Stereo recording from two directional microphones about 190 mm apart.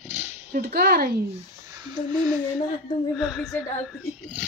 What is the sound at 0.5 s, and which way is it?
Speech, 50° right (ahead or behind).